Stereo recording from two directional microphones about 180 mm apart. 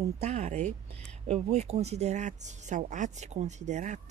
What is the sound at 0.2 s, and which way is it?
Speech, 40° right (ahead or behind).